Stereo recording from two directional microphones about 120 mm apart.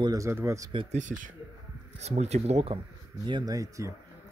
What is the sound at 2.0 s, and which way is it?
Speech, 65° right (ahead or behind).